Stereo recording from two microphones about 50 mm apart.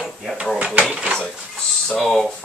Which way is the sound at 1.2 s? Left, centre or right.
Centre.